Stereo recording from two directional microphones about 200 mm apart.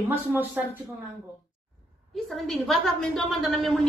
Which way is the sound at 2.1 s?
Centre (ahead or behind).